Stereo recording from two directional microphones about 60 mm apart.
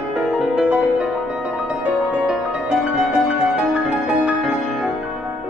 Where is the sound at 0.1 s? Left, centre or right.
Centre.